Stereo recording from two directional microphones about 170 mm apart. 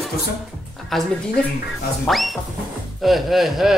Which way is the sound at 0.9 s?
Centre (ahead or behind).